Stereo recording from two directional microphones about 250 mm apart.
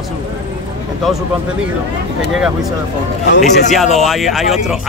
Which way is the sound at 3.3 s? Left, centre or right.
Left.